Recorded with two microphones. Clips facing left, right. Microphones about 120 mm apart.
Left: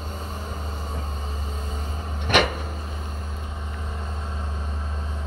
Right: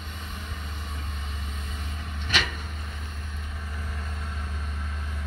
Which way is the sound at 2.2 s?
55° left (ahead or behind).